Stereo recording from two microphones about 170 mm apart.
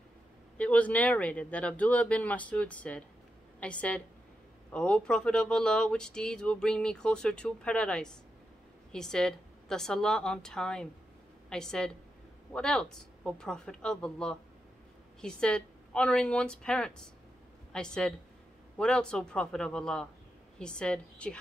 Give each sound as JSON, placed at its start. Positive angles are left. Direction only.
{"t": 0.6, "sound": "a woman's voice", "side_deg": 10}